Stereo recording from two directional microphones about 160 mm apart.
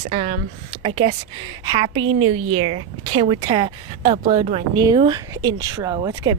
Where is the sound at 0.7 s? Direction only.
35° right (ahead or behind).